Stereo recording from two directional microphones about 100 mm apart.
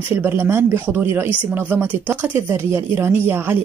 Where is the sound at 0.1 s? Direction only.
20° right (ahead or behind).